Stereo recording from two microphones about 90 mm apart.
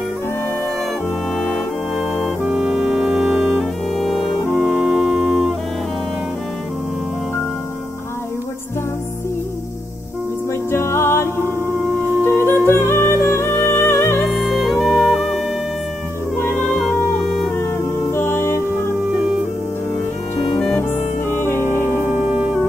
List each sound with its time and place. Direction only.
2.4 s music: centre (ahead or behind)
4.5 s music: 20° left (ahead or behind)
4.8 s music: 5° left (ahead or behind)
10.7 s music: 30° left (ahead or behind)
14.8 s music: 5° left (ahead or behind)
16.5 s music: 25° left (ahead or behind)
18.1 s music: 25° left (ahead or behind)
21.3 s music: 25° left (ahead or behind)